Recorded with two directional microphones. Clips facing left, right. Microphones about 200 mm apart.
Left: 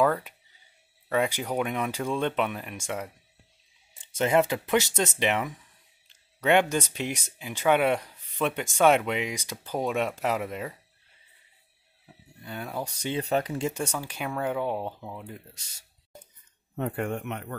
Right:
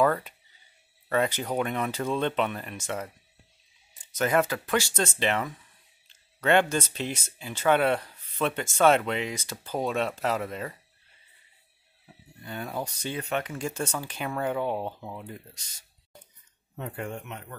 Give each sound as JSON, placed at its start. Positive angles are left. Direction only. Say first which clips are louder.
{"t": 0.0, "sound": "speech", "louder": "even", "side_deg": 5}
{"t": 3.9, "sound": "speech", "louder": "left 2 dB", "side_deg": 25}
{"t": 12.4, "sound": "speech", "louder": "even", "side_deg": 5}
{"t": 13.1, "sound": "speech", "louder": "left 5 dB", "side_deg": 35}
{"t": 13.9, "sound": "speech", "louder": "even", "side_deg": 10}
{"t": 16.7, "sound": "speech", "louder": "left 5 dB", "side_deg": 55}